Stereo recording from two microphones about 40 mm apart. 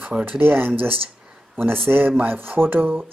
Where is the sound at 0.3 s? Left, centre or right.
Right.